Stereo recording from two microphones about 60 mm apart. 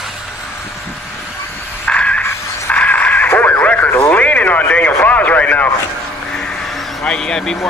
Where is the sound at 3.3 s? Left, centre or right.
Left.